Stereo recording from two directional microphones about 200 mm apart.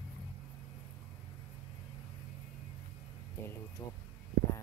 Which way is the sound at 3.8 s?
20° left (ahead or behind).